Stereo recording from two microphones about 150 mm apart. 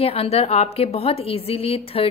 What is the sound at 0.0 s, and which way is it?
A woman's voice, 40° left (ahead or behind).